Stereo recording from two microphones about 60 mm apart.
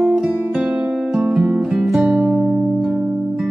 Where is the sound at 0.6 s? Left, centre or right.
Centre.